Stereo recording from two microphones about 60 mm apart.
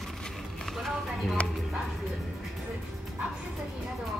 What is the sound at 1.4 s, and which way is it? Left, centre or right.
Speech, left.